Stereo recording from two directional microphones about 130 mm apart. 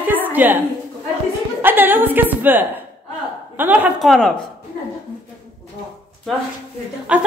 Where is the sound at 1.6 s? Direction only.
15° right (ahead or behind).